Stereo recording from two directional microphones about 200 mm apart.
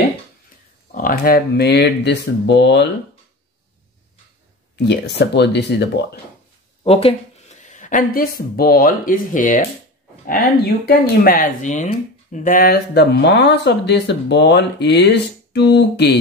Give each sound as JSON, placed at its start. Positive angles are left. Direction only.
{"t": 0.9, "sound": "speech", "side_deg": 45}
{"t": 4.8, "sound": "speech", "side_deg": 60}
{"t": 6.8, "sound": "a sound", "side_deg": 30}
{"t": 8.4, "sound": "speech", "side_deg": 50}